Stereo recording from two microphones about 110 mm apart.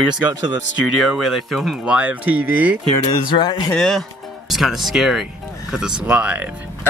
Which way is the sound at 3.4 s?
45° left (ahead or behind).